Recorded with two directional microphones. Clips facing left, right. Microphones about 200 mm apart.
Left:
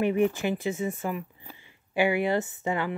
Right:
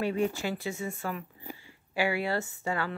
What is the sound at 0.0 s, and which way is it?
A woman's voice, 20° left (ahead or behind).